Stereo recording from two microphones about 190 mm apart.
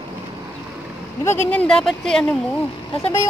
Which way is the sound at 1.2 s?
10° left (ahead or behind).